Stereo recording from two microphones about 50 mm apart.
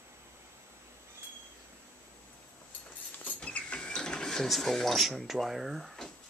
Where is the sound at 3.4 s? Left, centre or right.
Left; by 4.9 s centre.